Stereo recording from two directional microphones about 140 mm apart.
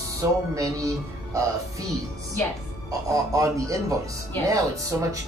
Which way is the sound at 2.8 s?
25° right (ahead or behind).